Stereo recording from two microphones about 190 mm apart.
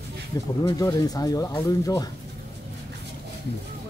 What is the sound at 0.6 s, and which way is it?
Speech, 20° left (ahead or behind).